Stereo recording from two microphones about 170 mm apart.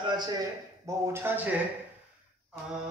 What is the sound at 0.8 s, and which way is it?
Speech, 15° right (ahead or behind).